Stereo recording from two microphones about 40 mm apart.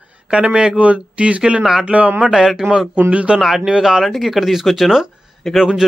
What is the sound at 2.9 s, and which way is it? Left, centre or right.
Speech, right.